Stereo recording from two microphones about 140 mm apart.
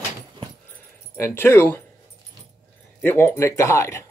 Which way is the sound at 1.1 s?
15° left (ahead or behind).